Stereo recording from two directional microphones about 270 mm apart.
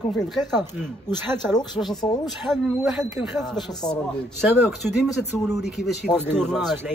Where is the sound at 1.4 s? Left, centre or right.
Centre.